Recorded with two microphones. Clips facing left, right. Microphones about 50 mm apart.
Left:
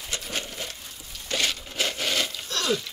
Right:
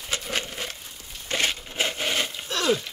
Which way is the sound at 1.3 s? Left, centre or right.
Right.